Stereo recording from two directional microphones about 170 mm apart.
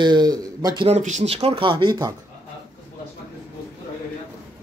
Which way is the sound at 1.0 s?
45° right (ahead or behind).